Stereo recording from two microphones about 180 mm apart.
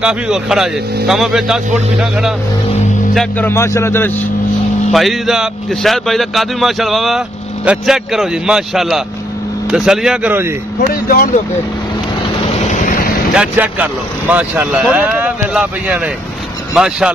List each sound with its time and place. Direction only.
0.0 s a man's voice: 5° right (ahead or behind)
3.2 s speech: 10° left (ahead or behind)
4.9 s a man's voice: centre (ahead or behind)
10.9 s speech: 55° left (ahead or behind)
12.4 s vehicle: 45° left (ahead or behind)
13.3 s a man's voice: 5° right (ahead or behind)